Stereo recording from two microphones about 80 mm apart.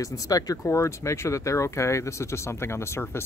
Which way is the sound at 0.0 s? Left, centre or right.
Left.